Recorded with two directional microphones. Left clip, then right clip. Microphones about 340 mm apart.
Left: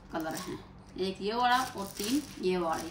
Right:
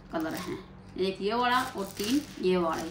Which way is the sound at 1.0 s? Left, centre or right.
Centre.